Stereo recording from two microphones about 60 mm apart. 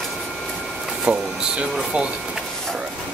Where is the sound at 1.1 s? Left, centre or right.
Right.